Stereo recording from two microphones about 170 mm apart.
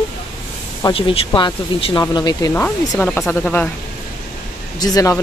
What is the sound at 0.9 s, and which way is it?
Speech, 30° left (ahead or behind).